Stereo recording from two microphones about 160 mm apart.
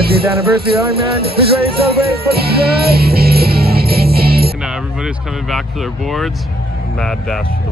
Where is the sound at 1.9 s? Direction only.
75° right (ahead or behind).